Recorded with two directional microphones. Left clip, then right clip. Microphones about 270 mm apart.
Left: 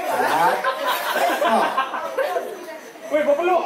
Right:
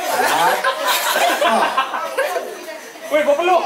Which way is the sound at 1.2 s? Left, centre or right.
Centre.